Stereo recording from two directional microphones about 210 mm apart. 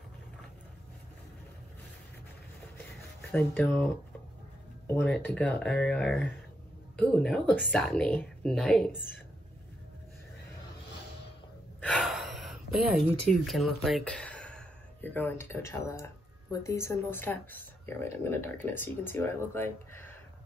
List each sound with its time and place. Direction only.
3.2 s speech: 10° left (ahead or behind)
11.8 s speech: 5° left (ahead or behind)